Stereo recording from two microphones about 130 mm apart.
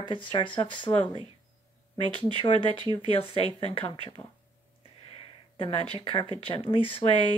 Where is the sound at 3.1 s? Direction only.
45° left (ahead or behind).